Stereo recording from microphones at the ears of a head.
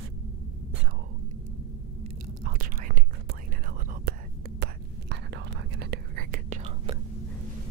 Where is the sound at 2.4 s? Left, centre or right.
Right.